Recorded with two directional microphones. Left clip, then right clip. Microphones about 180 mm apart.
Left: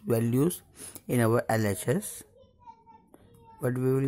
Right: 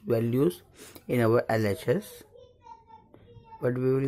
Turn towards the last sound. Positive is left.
turn(degrees=20)  # may be behind; listen again after turning